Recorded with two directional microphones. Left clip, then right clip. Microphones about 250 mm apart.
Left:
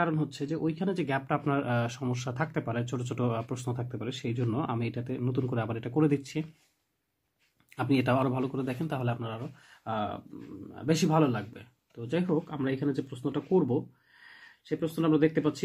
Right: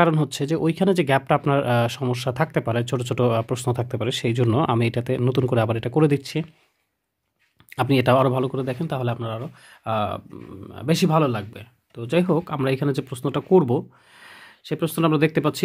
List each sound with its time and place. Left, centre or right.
0.0 s speech: right
7.7 s a man's voice: right